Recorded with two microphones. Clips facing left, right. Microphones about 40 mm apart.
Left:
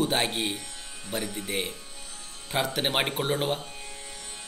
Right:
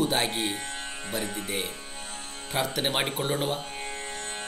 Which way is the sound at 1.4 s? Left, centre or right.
Left.